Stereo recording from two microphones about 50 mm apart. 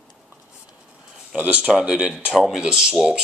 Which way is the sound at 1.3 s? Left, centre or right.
Right.